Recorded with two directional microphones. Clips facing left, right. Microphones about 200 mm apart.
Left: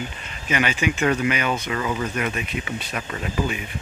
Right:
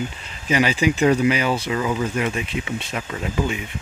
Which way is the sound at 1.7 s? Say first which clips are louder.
Right 3 dB; 10° right (ahead or behind).